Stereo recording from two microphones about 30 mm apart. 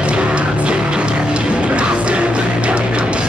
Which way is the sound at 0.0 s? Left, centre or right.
Right.